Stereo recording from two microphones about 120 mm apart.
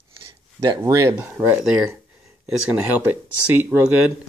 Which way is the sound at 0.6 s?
30° right (ahead or behind).